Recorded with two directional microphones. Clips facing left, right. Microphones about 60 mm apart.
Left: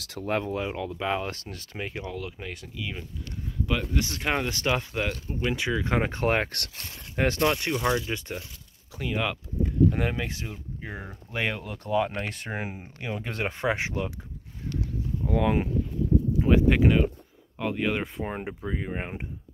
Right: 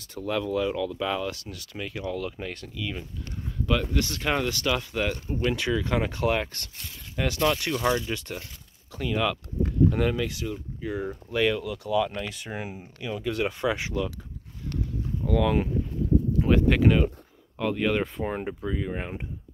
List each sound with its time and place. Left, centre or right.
0.2 s speech: left
2.0 s speech: centre
4.5 s speech: left
5.4 s speech: centre; by 6.3 s left
6.3 s speech: left
7.2 s speech: left
7.8 s speech: centre
8.1 s speech: left
10.1 s speech: left
15.2 s speech: left
18.7 s speech: left